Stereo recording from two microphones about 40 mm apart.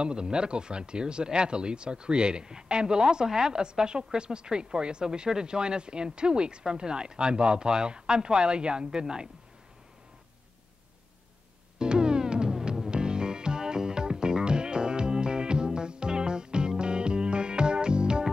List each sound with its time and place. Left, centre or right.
0.0 s speech: right
11.8 s music: right